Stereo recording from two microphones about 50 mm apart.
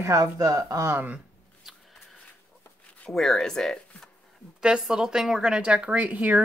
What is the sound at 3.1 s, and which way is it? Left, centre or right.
Speech, centre.